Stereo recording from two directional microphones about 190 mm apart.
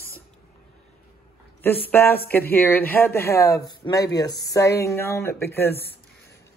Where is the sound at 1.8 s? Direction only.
10° left (ahead or behind).